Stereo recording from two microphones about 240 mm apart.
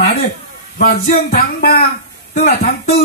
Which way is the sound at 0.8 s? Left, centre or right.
Left.